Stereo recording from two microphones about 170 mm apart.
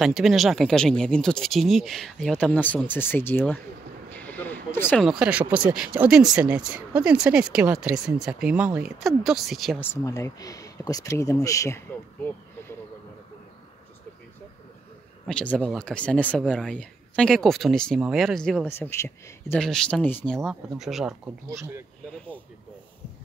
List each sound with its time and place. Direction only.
0.0 s speech: centre (ahead or behind)
4.1 s a sound: 10° left (ahead or behind)
5.0 s speech: 5° right (ahead or behind)
10.0 s speech: 20° left (ahead or behind)
15.2 s speech: 5° left (ahead or behind)
18.7 s speech: 15° left (ahead or behind)
19.6 s speech: 5° left (ahead or behind)
20.4 s speech: centre (ahead or behind)